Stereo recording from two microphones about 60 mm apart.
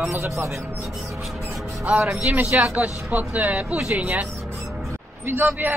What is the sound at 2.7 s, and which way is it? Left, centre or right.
Speech, right.